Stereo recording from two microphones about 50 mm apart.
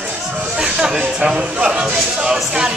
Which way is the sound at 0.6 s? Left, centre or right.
Centre.